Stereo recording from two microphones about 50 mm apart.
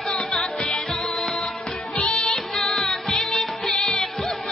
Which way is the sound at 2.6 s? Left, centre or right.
Centre.